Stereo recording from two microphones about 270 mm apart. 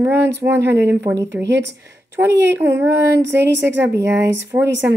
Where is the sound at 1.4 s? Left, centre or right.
Right.